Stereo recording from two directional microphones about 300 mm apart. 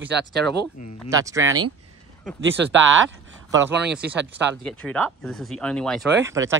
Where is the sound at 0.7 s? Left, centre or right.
Left.